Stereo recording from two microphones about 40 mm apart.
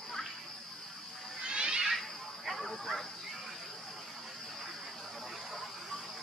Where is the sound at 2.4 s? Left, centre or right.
Centre.